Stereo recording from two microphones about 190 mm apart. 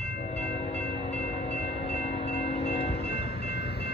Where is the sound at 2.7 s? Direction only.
65° left (ahead or behind).